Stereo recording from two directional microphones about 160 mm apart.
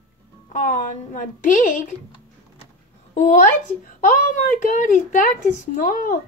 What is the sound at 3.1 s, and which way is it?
A woman's voice, 50° left (ahead or behind).